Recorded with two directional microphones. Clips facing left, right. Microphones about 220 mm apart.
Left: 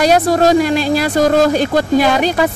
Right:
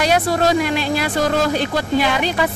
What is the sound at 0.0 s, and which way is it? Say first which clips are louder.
Speech: left 5 dB; 40° left (ahead or behind).